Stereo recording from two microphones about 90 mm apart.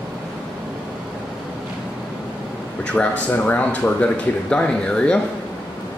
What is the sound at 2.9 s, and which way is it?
Speech, 15° left (ahead or behind).